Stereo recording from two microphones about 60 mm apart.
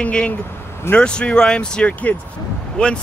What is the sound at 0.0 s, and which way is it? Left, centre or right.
Speech, centre.